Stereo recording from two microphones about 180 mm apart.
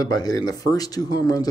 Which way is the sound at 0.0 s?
20° left (ahead or behind).